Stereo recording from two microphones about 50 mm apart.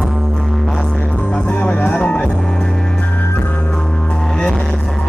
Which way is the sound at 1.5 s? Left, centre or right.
Centre.